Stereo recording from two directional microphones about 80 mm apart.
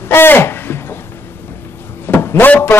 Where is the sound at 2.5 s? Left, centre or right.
Left.